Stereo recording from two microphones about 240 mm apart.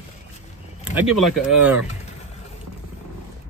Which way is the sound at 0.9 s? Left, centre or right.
Centre.